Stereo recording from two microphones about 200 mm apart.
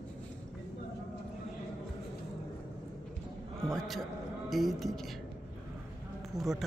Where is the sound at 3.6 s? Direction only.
Centre (ahead or behind).